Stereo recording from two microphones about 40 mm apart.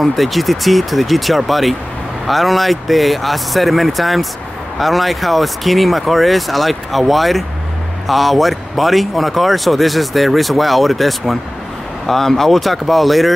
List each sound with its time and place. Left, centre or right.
0.0 s speech: centre